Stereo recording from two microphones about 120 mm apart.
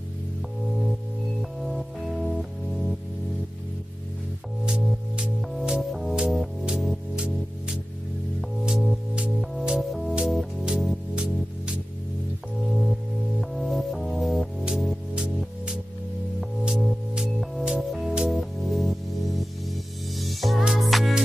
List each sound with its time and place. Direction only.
1.6 s music: centre (ahead or behind)
4.6 s music: 10° right (ahead or behind)
8.4 s music: 5° right (ahead or behind)
13.4 s music: centre (ahead or behind)